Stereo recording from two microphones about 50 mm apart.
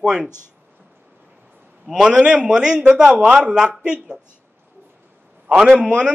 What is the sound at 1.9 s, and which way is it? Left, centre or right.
A man's voice, centre.